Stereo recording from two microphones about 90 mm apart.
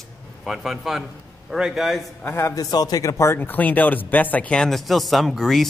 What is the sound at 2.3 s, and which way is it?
Speech, 35° left (ahead or behind).